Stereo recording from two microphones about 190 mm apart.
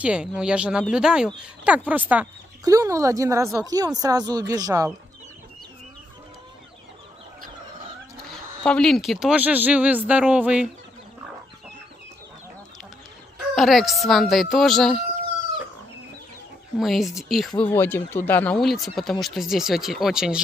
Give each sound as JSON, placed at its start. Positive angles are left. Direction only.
{"t": 0.0, "sound": "speech", "side_deg": -5}
{"t": 8.6, "sound": "speech", "side_deg": 5}
{"t": 13.6, "sound": "speech", "side_deg": 0}
{"t": 16.7, "sound": "speech", "side_deg": 0}